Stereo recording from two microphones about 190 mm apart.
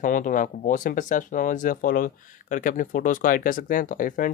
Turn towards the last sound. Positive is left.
turn(degrees=45)  # may be behind; listen again after turning